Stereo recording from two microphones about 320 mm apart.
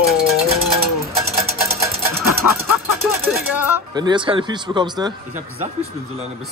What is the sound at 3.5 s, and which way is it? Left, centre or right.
Speech, centre.